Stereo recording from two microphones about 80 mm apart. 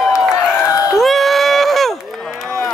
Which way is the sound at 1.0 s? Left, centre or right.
Centre.